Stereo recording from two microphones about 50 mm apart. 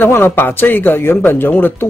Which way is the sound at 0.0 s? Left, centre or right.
Left.